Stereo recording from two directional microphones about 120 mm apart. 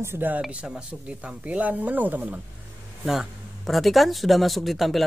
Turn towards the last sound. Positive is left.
turn(degrees=0)  # may be behind; listen again after turning